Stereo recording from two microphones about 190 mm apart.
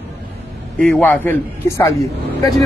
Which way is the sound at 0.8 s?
10° left (ahead or behind).